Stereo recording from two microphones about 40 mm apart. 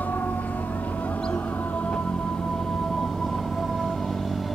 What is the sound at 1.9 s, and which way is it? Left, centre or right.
Train, left.